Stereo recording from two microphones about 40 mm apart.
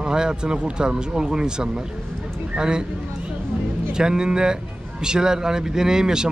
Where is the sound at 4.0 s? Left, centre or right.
Centre.